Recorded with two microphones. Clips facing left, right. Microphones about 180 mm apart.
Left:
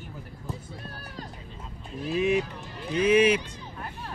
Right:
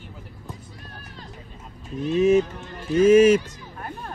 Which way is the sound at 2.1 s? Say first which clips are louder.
Right 7 dB; 40° right (ahead or behind).